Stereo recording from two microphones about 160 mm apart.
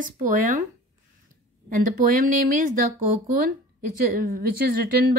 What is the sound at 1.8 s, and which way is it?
A woman's voice, 60° right (ahead or behind).